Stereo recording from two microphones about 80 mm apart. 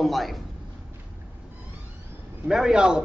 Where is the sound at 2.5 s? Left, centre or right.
Centre.